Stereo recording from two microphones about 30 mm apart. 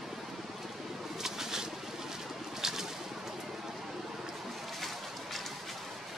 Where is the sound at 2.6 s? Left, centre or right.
Centre.